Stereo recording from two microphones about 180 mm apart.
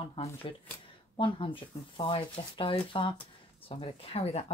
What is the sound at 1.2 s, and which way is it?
Speech, 25° left (ahead or behind).